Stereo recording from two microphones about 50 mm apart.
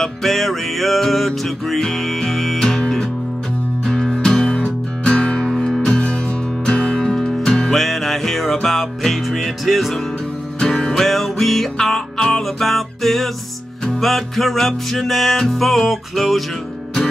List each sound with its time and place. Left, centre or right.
0.0 s music: centre
10.6 s music: centre